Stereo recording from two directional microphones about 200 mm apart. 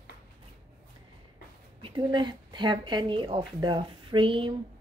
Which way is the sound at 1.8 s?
25° right (ahead or behind).